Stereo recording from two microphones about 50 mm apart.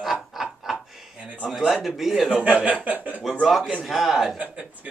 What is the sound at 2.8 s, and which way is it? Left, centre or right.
Speech, right.